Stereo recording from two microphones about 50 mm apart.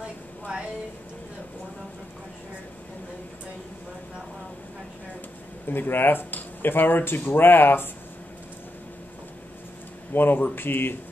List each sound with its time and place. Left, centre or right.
0.0 s a sound: right
5.7 s speech: left
10.1 s speech: left